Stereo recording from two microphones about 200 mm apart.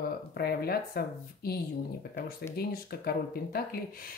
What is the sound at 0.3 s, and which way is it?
Speech, 50° left (ahead or behind).